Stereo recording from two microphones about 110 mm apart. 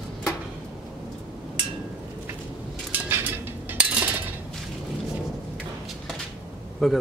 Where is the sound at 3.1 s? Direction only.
15° right (ahead or behind).